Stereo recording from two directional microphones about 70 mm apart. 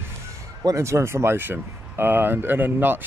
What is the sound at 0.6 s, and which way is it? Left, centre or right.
Speech, right.